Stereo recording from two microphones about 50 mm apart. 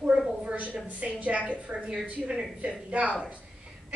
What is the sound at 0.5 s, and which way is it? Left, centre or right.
A woman's voice, right.